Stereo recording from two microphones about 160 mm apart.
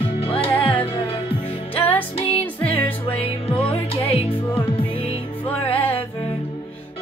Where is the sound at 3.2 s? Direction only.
35° left (ahead or behind).